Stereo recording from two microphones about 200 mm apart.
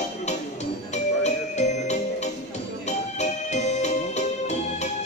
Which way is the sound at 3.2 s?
35° left (ahead or behind).